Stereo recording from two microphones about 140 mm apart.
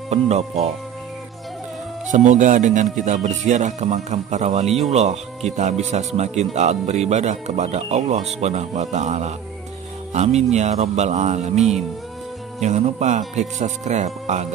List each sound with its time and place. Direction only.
0.1 s speech: 50° right (ahead or behind)
2.0 s speech: 65° right (ahead or behind)